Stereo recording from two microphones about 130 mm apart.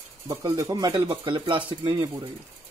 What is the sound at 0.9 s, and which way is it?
Speech, 40° right (ahead or behind).